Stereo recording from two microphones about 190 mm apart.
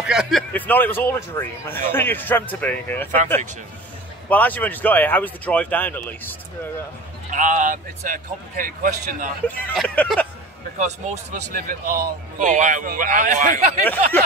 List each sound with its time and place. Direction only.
0.0 s speech: 5° right (ahead or behind)
4.3 s speech: 10° left (ahead or behind)
7.2 s speech: 40° right (ahead or behind)
9.8 s speech: 5° left (ahead or behind)
10.8 s speech: 40° right (ahead or behind)